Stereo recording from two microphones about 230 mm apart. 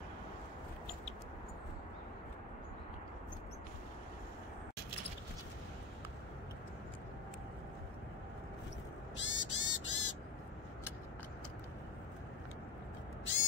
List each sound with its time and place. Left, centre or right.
9.1 s owl: left
13.2 s crow: left